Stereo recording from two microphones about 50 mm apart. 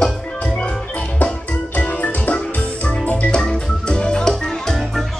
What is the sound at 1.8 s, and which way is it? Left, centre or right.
Music, left.